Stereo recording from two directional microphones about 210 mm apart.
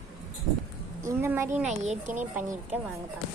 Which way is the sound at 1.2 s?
10° right (ahead or behind).